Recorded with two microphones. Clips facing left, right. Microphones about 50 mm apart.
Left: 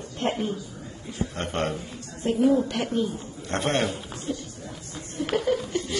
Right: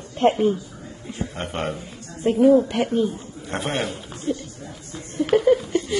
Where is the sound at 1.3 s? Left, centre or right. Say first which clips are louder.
Even; centre.